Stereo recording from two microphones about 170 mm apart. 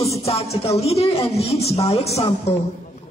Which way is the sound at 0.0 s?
35° left (ahead or behind).